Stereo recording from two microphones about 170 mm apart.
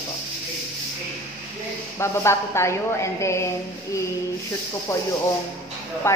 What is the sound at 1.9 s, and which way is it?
A woman's voice, 15° left (ahead or behind).